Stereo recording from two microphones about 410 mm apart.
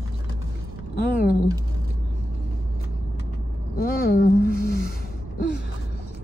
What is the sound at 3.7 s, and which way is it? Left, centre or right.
Speech, left.